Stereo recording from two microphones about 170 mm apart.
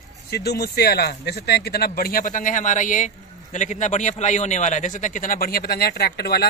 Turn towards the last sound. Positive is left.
turn(degrees=65)  # may be behind; listen again after turning